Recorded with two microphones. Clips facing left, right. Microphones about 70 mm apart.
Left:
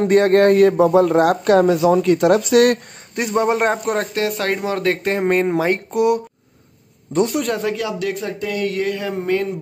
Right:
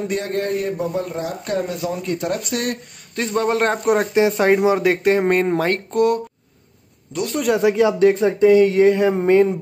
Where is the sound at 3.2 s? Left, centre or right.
Centre.